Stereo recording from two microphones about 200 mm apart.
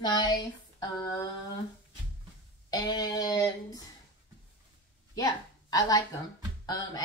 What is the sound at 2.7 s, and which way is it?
Speech, 20° left (ahead or behind).